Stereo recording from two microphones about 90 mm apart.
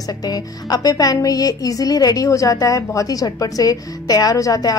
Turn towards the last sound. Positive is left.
turn(degrees=40)  # may be behind; listen again after turning